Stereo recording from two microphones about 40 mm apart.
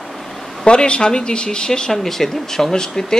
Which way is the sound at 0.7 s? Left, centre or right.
Left.